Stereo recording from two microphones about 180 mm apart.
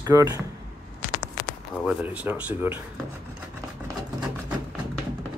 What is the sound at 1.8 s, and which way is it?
Speech, 5° right (ahead or behind).